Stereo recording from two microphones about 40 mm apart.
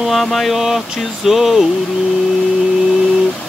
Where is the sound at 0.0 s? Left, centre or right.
Centre.